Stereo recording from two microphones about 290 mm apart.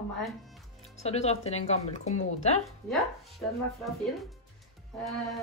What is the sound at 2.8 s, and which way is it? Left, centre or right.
Speech, centre.